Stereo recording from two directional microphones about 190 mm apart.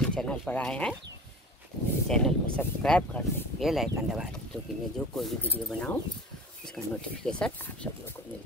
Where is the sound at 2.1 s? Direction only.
5° left (ahead or behind).